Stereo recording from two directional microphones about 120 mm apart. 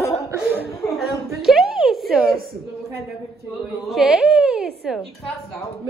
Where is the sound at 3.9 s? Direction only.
Centre (ahead or behind).